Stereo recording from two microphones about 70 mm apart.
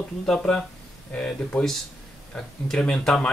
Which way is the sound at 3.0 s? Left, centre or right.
Centre.